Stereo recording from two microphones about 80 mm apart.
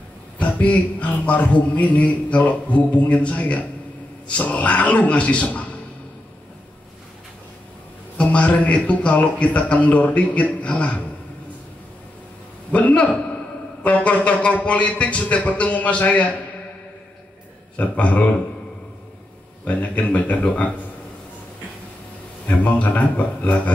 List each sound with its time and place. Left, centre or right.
0.4 s a man's voice: centre
8.2 s a man's voice: centre
12.7 s a man's voice: centre
17.7 s a man's voice: centre
19.6 s a man's voice: centre
22.6 s a man's voice: centre